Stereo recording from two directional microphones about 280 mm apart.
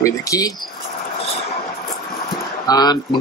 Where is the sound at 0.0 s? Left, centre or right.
Centre.